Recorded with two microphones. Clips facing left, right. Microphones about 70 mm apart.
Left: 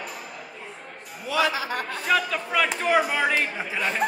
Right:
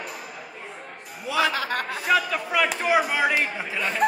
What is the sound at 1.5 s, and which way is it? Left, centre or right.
Speech, right.